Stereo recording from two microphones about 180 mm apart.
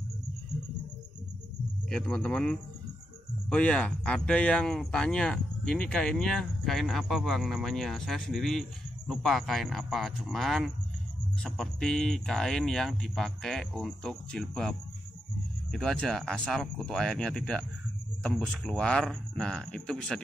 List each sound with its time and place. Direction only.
1.9 s speech: 5° left (ahead or behind)